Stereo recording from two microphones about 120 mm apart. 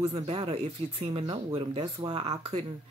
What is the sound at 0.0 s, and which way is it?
Speech, 55° right (ahead or behind).